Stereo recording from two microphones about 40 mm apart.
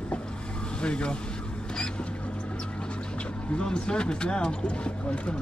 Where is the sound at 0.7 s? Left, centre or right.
Left.